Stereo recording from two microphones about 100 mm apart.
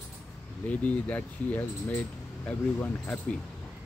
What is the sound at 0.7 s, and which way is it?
Speech, 15° left (ahead or behind).